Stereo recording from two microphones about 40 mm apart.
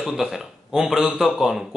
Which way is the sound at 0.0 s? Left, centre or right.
Centre.